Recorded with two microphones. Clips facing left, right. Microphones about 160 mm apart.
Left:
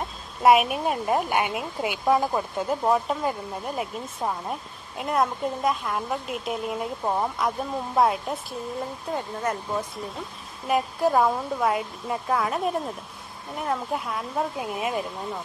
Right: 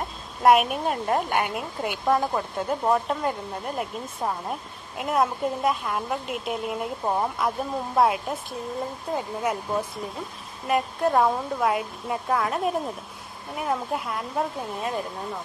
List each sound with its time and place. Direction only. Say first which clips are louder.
0.4 s a woman's voice: even; centre (ahead or behind)
14.7 s speech: left 1 dB; 10° left (ahead or behind)